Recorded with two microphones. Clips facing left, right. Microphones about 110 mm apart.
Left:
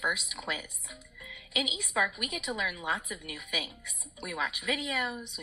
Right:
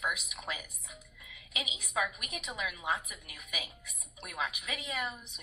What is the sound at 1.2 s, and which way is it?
A woman's voice, 85° left.